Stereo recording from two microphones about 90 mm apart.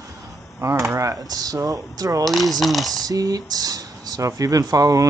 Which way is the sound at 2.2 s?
Centre (ahead or behind).